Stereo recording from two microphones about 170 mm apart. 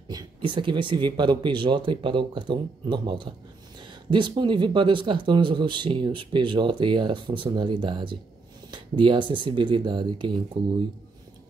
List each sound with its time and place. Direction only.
0.1 s speech: 30° right (ahead or behind)